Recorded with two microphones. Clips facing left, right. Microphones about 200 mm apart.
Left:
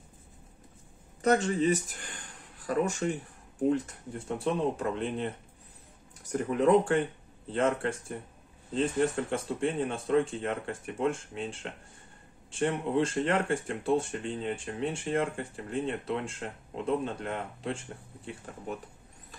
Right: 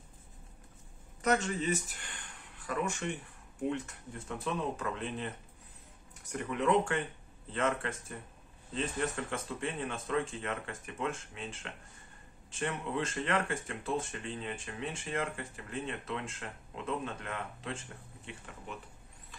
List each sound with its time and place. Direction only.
1.2 s speech: 35° left (ahead or behind)